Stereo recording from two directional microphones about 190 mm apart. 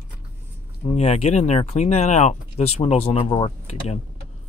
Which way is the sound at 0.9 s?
35° left (ahead or behind).